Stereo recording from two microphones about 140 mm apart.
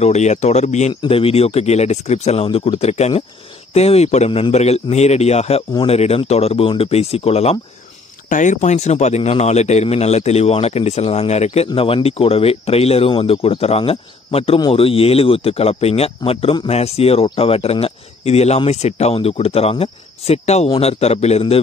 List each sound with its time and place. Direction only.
0.0 s speech: 55° left (ahead or behind)
1.0 s speech: 40° left (ahead or behind)
8.3 s speech: 60° left (ahead or behind)